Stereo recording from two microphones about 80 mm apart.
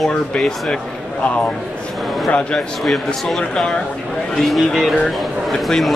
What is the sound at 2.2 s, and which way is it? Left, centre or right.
Speech, centre.